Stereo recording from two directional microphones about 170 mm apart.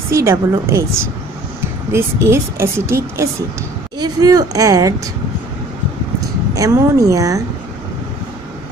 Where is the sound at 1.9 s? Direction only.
15° right (ahead or behind).